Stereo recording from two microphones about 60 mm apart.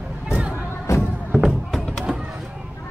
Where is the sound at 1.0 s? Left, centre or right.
Centre.